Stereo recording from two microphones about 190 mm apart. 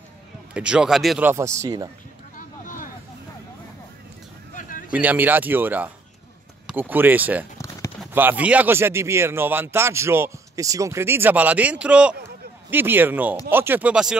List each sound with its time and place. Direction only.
0.6 s speech: 5° right (ahead or behind)
1.3 s speech: 15° right (ahead or behind)
2.3 s vehicle: 45° left (ahead or behind)
4.6 s a sound: 45° left (ahead or behind)
4.9 s speech: 10° right (ahead or behind)
7.5 s a sound: 15° left (ahead or behind)
8.1 s speech: 10° right (ahead or behind)